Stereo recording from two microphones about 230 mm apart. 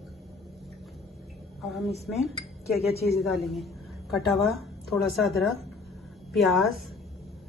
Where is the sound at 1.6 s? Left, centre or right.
Centre.